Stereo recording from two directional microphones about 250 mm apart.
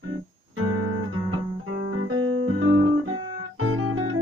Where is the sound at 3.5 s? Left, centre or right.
Right.